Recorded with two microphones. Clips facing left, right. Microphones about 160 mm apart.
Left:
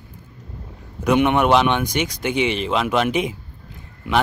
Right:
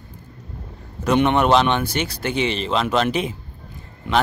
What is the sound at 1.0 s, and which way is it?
Speech, 10° left (ahead or behind).